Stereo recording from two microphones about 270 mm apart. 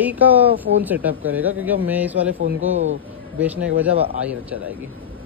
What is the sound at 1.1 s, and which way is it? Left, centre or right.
Speech, right.